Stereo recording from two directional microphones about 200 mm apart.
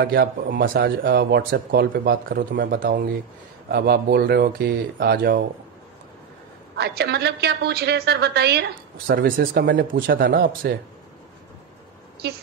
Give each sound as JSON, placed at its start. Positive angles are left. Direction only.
{"t": 0.0, "sound": "speech", "side_deg": -50}
{"t": 6.8, "sound": "a woman's voice", "side_deg": -55}
{"t": 9.8, "sound": "speech", "side_deg": -45}